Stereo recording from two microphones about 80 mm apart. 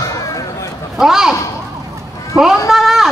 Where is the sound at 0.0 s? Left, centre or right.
Left.